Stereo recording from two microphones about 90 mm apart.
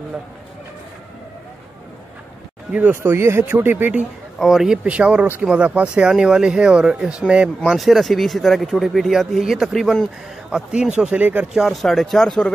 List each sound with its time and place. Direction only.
2.7 s speech: 15° right (ahead or behind)
3.0 s speech: 30° right (ahead or behind)
4.4 s speech: 5° right (ahead or behind)
10.5 s speech: 10° right (ahead or behind); by 12.5 s 5° left (ahead or behind)